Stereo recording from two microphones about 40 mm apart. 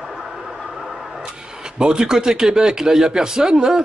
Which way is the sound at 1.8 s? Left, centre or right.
Centre.